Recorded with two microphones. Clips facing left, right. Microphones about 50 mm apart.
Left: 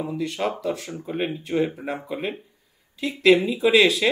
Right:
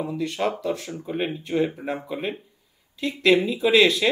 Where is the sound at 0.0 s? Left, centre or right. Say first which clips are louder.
Right 1 dB; centre.